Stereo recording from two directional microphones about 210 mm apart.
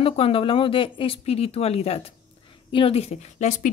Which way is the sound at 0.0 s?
25° left (ahead or behind).